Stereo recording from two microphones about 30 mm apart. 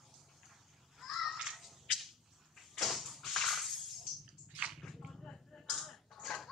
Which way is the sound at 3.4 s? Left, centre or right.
Centre.